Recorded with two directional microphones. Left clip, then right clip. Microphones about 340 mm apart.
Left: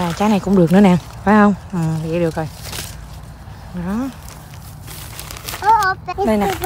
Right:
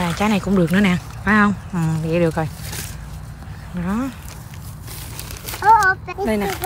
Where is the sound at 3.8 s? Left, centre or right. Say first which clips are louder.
Even; centre.